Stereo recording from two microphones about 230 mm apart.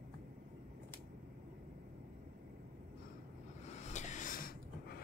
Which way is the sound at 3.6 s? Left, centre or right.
Left.